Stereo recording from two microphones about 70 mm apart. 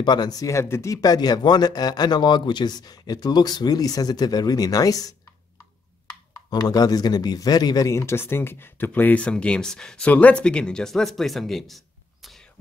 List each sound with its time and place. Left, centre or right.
0.0 s speech: left
0.5 s speech: left
1.0 s speech: left
6.5 s speech: left
7.9 s speech: left; by 12.4 s centre